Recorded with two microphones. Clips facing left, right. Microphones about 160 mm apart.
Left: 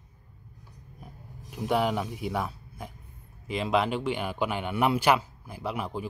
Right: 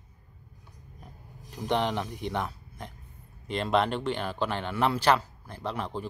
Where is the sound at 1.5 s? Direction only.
10° left (ahead or behind).